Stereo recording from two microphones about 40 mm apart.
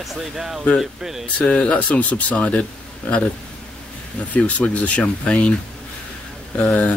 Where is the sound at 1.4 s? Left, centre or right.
Left.